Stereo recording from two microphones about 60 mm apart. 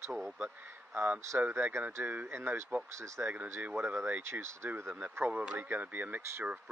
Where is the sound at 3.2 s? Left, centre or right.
Right.